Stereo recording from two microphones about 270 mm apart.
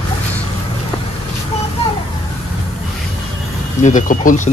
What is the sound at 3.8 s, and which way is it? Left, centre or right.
Speech, left.